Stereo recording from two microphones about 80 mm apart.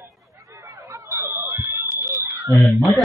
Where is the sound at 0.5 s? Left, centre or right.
Right.